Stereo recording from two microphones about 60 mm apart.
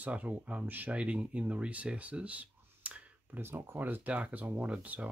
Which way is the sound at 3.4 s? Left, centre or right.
Right.